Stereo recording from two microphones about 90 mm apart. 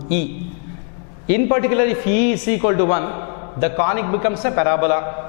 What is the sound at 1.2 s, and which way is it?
A man's voice, 10° left (ahead or behind).